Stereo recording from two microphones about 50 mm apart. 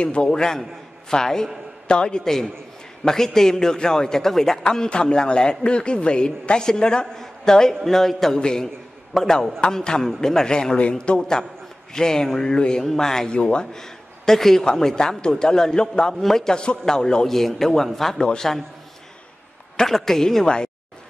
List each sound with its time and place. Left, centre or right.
0.0 s speech: left; by 8.4 s centre
8.4 s speech: centre
9.1 s speech: centre
19.8 s speech: centre